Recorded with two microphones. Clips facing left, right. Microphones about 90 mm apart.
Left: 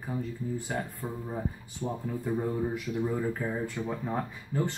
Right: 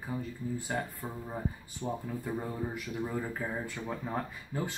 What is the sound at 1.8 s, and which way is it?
Speech, 5° left (ahead or behind).